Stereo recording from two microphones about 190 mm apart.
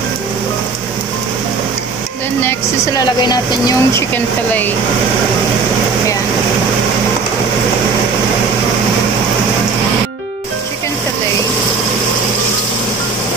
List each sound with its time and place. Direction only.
2.4 s speech: 20° left (ahead or behind)